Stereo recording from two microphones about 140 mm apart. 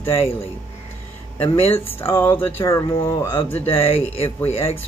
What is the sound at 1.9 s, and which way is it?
Speech, 15° left (ahead or behind).